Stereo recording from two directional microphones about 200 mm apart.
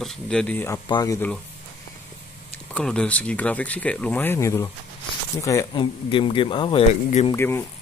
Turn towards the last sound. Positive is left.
turn(degrees=15)  # may be behind; listen again after turning